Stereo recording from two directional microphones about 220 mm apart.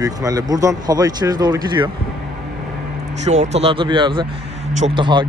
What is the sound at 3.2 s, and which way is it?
Speech, 30° right (ahead or behind).